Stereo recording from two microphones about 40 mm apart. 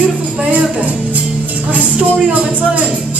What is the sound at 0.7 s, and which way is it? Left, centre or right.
Music, right.